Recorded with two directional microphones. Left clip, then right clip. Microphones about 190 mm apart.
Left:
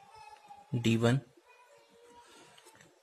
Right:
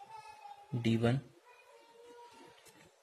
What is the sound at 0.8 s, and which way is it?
Speech, 30° left (ahead or behind).